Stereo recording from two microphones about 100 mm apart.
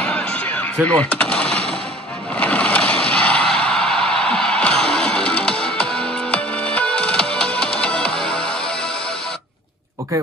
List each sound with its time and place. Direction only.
0.0 s artillery fire: 10° left (ahead or behind)
2.3 s a sound: 15° left (ahead or behind)
7.8 s music: 10° left (ahead or behind)